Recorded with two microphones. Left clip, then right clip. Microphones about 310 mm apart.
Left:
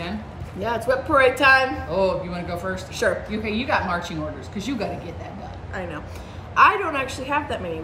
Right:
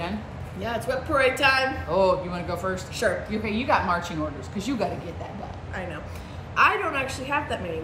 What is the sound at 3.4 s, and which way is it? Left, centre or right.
Speech, centre.